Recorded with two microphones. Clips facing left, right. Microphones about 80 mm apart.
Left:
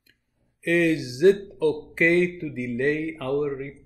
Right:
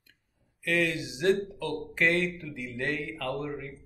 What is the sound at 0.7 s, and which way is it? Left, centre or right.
Speech, left.